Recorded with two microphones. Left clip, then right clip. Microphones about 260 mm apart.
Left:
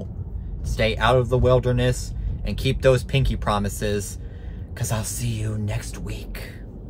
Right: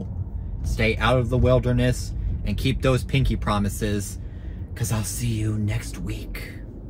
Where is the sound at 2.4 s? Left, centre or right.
Centre.